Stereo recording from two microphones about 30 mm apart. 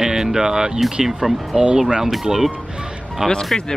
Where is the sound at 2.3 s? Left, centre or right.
Right.